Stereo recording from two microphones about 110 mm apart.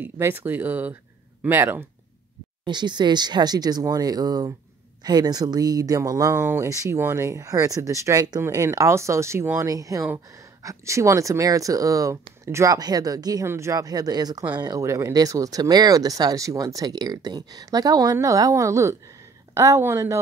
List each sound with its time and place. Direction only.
0.0 s speech: 20° right (ahead or behind)
2.6 s speech: 45° right (ahead or behind); by 20.2 s 25° right (ahead or behind)